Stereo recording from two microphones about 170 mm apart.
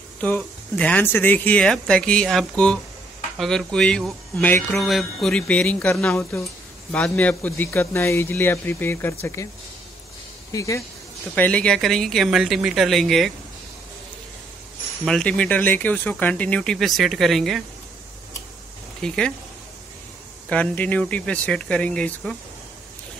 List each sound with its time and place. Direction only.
0.2 s speech: 10° left (ahead or behind)
4.7 s speech: centre (ahead or behind)
10.5 s speech: 20° left (ahead or behind)
11.3 s speech: 10° left (ahead or behind)
15.0 s speech: 5° left (ahead or behind)
18.9 s speech: 5° left (ahead or behind)
20.4 s speech: 10° left (ahead or behind)